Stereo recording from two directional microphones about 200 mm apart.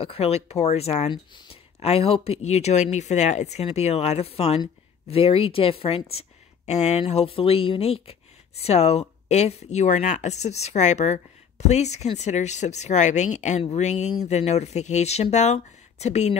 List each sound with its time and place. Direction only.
0.0 s speech: 30° left (ahead or behind)